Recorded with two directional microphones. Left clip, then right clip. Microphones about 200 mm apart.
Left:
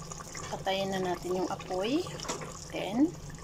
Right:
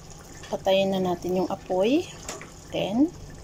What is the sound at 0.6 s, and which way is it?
Speech, 15° right (ahead or behind).